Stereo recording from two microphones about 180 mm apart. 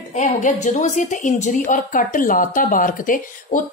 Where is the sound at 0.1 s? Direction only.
45° left (ahead or behind).